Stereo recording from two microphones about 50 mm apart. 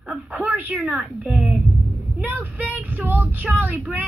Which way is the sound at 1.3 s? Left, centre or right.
Right.